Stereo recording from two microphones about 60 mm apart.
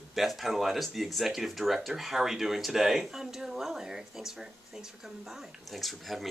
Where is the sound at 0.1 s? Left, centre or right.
Centre.